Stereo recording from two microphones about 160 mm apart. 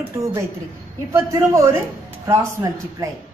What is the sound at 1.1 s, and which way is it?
A woman's voice, 15° right (ahead or behind).